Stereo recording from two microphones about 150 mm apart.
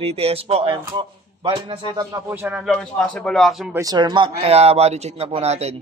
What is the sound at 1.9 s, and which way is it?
Speech, 20° right (ahead or behind).